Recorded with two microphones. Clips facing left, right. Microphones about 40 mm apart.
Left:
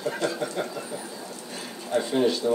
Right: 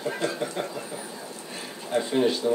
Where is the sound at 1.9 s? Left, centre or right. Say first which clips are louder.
Left 1 dB; right.